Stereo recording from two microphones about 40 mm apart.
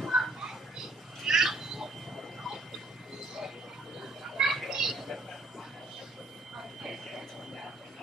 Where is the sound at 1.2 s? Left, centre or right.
Centre.